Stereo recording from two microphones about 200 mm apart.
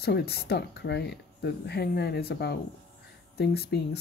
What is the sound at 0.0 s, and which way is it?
Speech, 55° left (ahead or behind).